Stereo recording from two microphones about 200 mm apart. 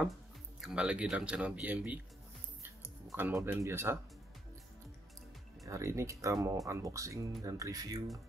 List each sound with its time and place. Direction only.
0.6 s speech: 5° right (ahead or behind)
2.6 s music: 10° right (ahead or behind)
5.7 s speech: 15° right (ahead or behind)